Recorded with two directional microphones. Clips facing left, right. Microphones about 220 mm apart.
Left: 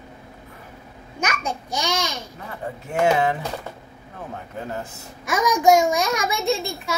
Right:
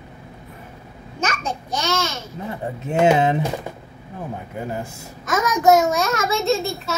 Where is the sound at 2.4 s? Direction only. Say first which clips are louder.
Right 5 dB; 20° right (ahead or behind).